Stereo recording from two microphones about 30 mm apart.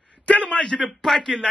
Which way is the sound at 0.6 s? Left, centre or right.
Left.